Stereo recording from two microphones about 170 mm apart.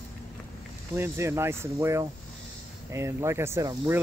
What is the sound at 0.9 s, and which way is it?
Speech, 15° right (ahead or behind).